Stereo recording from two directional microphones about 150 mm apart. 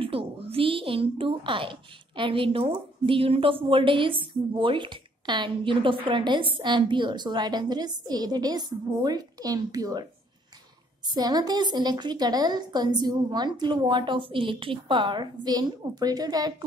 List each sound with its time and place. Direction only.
0.0 s a woman's voice: 40° right (ahead or behind)
11.1 s a woman's voice: 25° right (ahead or behind)